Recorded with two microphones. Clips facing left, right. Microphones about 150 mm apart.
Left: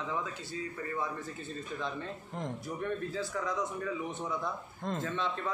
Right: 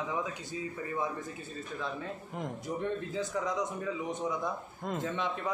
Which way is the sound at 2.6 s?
20° right (ahead or behind).